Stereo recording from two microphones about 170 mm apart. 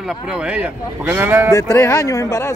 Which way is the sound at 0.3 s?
5° right (ahead or behind).